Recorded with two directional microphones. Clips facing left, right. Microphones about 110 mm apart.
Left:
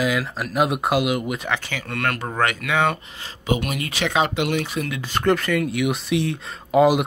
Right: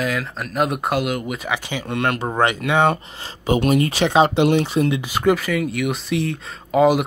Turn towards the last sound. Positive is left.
turn(degrees=0)  # may be behind; listen again after turning